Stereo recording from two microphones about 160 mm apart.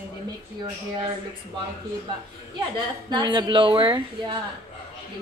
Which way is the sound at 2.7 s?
25° right (ahead or behind).